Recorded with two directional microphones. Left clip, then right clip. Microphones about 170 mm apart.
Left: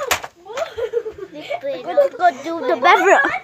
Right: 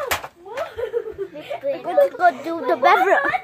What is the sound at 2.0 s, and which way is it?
Speech, 5° left (ahead or behind).